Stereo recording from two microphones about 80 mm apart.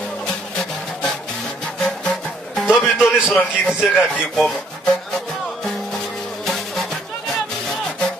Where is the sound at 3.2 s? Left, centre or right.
Left.